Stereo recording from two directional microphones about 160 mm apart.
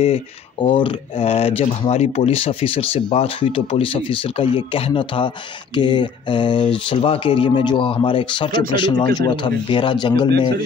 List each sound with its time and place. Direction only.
0.7 s speech: 30° left (ahead or behind)